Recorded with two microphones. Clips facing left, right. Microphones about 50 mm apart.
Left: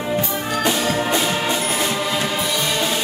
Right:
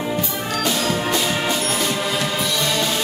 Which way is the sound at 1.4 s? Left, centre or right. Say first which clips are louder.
Left 1 dB; centre.